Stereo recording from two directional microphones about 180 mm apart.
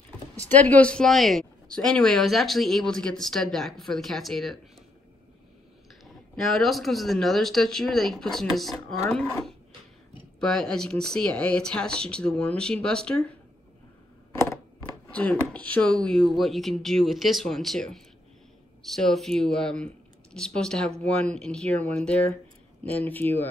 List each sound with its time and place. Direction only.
0.5 s speech: 10° left (ahead or behind)
6.0 s speech: centre (ahead or behind)
14.3 s a sound: 15° left (ahead or behind)
15.0 s speech: 10° left (ahead or behind)